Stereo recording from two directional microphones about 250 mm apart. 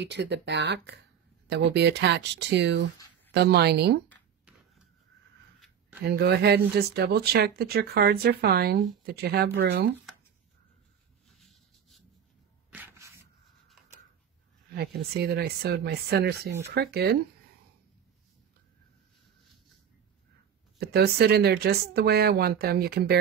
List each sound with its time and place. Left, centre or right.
0.0 s speech: right
6.0 s speech: right
11.2 s a sound: centre
14.7 s speech: right
20.8 s speech: right